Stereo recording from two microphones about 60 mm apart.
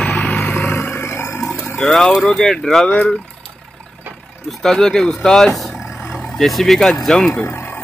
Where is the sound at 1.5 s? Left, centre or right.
Left.